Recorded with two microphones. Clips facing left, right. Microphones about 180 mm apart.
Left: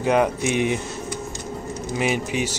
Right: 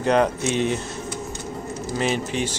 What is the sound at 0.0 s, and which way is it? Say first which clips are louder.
Speech: even; 10° left (ahead or behind).